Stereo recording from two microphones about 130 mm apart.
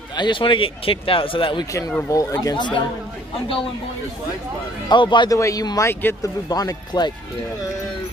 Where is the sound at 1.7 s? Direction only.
25° left (ahead or behind).